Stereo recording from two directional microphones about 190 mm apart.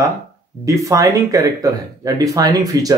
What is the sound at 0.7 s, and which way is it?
Speech, 15° right (ahead or behind).